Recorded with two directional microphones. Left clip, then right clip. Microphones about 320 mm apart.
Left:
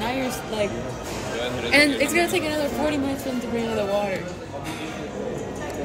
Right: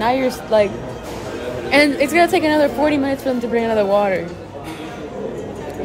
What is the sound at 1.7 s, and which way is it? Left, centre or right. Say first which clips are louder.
A woman's voice: right 5 dB; centre.